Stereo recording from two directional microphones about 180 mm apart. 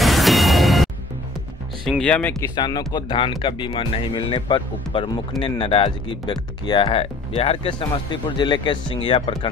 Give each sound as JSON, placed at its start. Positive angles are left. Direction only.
{"t": 0.0, "sound": "music", "side_deg": 0}
{"t": 1.9, "sound": "speech", "side_deg": 5}
{"t": 2.5, "sound": "speech", "side_deg": 25}